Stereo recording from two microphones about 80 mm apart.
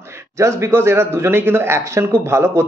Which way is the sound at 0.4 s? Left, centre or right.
Right.